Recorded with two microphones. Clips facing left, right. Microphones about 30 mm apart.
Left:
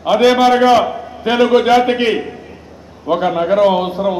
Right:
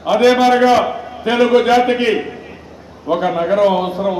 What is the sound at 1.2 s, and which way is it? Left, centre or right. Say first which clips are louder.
Speech: left 1 dB; centre.